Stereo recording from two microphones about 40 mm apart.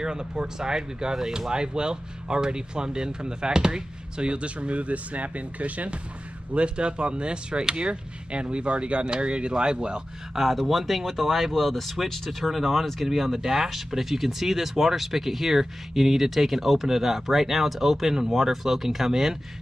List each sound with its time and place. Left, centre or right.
0.0 s speech: centre
10.3 s speech: centre